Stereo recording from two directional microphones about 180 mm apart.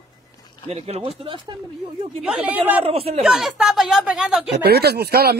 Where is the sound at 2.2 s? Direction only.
5° right (ahead or behind).